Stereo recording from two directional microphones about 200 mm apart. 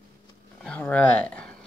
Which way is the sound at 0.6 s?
5° left (ahead or behind).